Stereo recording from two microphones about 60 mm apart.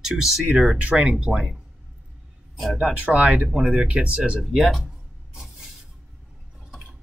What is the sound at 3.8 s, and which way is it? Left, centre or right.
Speech, right.